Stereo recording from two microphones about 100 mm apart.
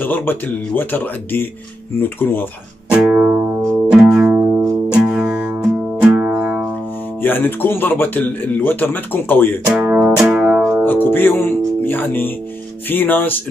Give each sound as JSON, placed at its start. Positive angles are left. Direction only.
{"t": 0.0, "sound": "speech", "side_deg": 20}
{"t": 2.9, "sound": "music", "side_deg": -10}
{"t": 3.3, "sound": "music", "side_deg": -20}
{"t": 4.0, "sound": "music", "side_deg": -5}
{"t": 7.2, "sound": "speech", "side_deg": 20}
{"t": 9.8, "sound": "music", "side_deg": -15}
{"t": 10.6, "sound": "music", "side_deg": -25}
{"t": 10.9, "sound": "speech", "side_deg": 20}